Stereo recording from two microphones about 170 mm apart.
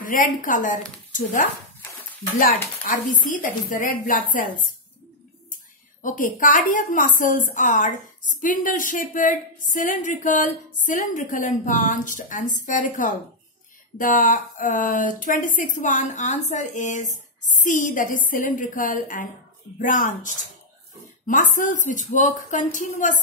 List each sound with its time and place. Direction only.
0.0 s a woman's voice: 55° left (ahead or behind)
2.8 s a woman's voice: 50° left (ahead or behind)
6.0 s a woman's voice: 55° left (ahead or behind)